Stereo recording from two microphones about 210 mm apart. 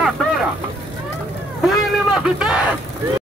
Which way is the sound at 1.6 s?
Centre (ahead or behind).